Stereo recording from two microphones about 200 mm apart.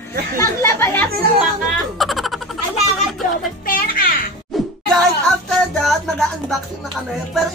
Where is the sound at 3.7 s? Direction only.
45° left (ahead or behind).